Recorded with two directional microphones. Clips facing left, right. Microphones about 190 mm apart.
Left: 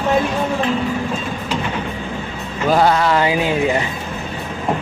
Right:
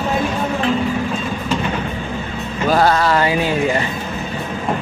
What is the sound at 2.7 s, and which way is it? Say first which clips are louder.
A man's voice: even; 15° left (ahead or behind).